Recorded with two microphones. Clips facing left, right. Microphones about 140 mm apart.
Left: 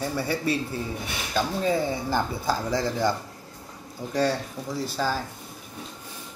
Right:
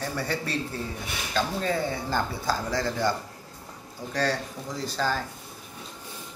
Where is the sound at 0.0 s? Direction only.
10° left (ahead or behind).